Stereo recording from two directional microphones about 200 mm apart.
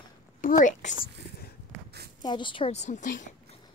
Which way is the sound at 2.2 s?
25° left (ahead or behind).